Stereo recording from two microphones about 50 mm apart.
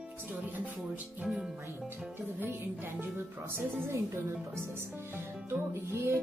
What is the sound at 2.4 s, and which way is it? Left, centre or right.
Speech, right.